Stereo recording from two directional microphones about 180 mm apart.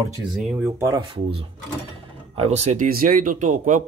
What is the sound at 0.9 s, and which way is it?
Speech, 25° right (ahead or behind).